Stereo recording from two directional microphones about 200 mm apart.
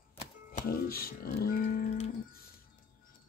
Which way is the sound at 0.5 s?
50° left (ahead or behind).